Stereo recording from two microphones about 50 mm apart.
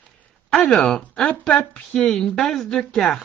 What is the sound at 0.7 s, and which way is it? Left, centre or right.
Speech, centre.